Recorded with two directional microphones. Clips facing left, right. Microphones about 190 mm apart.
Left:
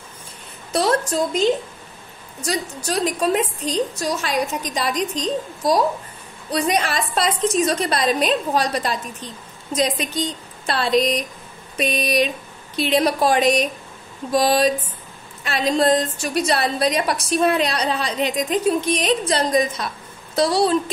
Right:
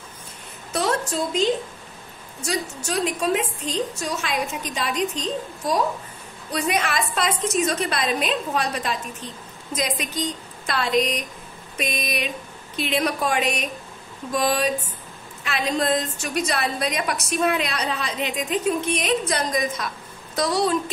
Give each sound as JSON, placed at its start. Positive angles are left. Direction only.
{"t": 0.7, "sound": "a woman's voice", "side_deg": 35}